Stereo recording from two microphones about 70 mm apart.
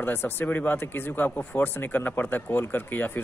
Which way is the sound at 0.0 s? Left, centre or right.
Left.